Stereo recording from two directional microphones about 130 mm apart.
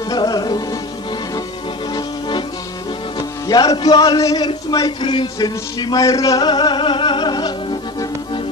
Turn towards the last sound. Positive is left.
turn(degrees=35)  # may be behind; listen again after turning